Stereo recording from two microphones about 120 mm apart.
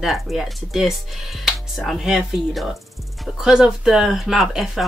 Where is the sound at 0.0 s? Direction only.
Centre (ahead or behind).